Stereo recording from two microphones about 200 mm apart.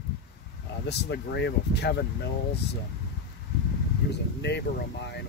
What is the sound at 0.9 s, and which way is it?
Speech, 55° left (ahead or behind).